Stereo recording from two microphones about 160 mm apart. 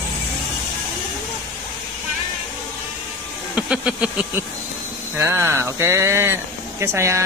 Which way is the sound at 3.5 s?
5° right (ahead or behind).